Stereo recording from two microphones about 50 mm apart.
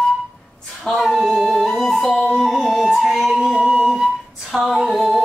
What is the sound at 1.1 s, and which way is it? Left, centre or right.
Music, right.